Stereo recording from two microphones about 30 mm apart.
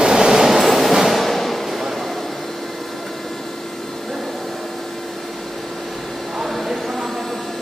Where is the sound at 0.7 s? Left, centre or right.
Centre.